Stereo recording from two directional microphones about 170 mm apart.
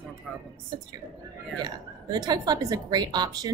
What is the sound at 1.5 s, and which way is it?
A woman's voice, 25° right (ahead or behind).